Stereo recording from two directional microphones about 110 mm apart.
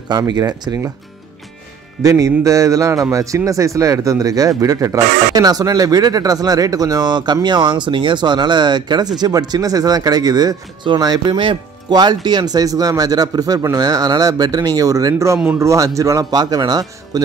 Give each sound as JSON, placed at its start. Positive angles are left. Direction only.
{"t": 0.3, "sound": "speech", "side_deg": -35}
{"t": 2.0, "sound": "speech", "side_deg": -30}